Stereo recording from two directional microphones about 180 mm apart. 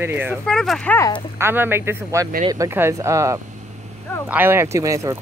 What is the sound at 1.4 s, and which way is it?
Speech, 10° right (ahead or behind).